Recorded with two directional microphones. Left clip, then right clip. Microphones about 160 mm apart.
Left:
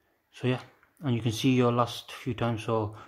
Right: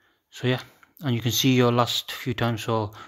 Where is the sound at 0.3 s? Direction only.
15° right (ahead or behind).